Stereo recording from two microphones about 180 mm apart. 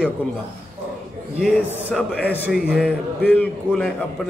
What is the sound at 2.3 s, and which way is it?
Speech, 10° right (ahead or behind).